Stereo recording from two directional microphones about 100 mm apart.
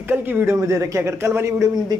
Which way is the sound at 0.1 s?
20° right (ahead or behind).